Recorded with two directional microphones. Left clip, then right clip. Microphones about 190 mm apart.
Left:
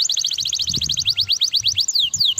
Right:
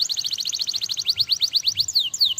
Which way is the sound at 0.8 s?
30° left (ahead or behind).